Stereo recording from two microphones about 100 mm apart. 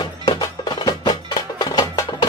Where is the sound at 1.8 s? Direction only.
30° left (ahead or behind).